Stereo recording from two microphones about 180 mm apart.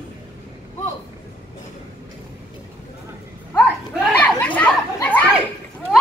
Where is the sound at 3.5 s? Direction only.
10° left (ahead or behind).